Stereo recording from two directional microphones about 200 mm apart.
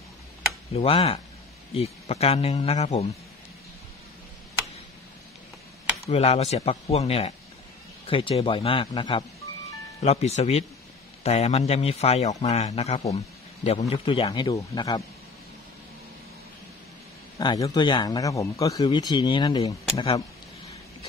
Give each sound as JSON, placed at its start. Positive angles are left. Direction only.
{"t": 0.7, "sound": "a man's voice", "side_deg": 30}
{"t": 6.0, "sound": "a man's voice", "side_deg": 30}
{"t": 17.4, "sound": "a man's voice", "side_deg": 20}